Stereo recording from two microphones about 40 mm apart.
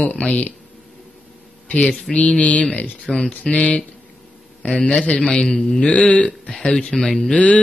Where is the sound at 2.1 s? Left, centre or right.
Left.